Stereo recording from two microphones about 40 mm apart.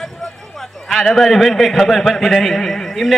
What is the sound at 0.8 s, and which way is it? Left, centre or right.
A man's voice, centre.